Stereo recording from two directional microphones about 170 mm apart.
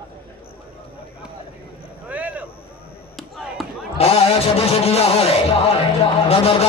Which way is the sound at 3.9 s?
35° left (ahead or behind).